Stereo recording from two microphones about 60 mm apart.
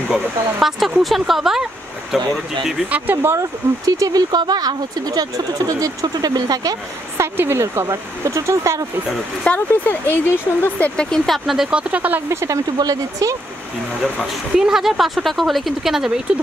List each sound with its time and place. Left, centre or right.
0.1 s speech: centre
2.9 s speech: right
3.3 s speech: right
7.3 s speech: right
7.6 s speech: right
9.5 s speech: left
9.8 s speech: left
10.8 s speech: centre
11.2 s speech: centre
11.7 s speech: right
12.4 s speech: right
14.2 s speech: centre